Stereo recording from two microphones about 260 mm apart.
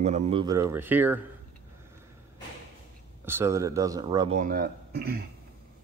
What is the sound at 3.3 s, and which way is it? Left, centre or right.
A man's voice, centre.